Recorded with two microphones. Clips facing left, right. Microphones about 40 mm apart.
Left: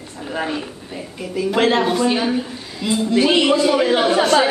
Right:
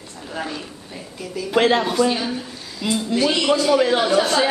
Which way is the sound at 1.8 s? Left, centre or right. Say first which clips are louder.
Left 2 dB; centre.